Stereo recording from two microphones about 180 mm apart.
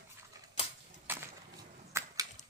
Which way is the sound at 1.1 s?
10° right (ahead or behind).